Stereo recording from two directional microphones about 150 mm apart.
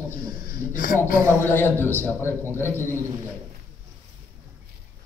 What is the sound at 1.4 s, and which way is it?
A woman's voice, 15° left (ahead or behind).